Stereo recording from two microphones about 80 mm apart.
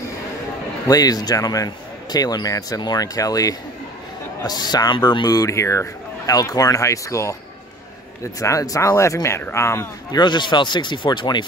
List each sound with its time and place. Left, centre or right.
0.8 s speech: left
5.2 s speech: left
10.1 s speech: left